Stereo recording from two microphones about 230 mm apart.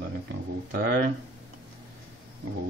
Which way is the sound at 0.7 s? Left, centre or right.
Right.